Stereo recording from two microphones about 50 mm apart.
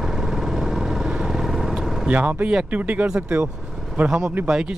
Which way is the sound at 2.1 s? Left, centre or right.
Right.